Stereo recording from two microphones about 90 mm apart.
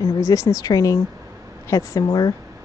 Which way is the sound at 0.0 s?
35° left (ahead or behind).